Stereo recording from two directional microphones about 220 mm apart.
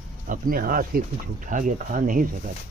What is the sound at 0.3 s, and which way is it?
Speech, 40° right (ahead or behind).